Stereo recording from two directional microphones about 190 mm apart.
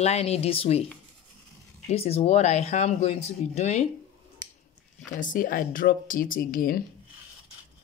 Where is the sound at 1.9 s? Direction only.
30° left (ahead or behind).